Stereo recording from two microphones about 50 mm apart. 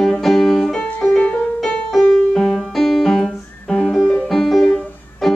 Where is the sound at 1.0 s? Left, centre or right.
Left.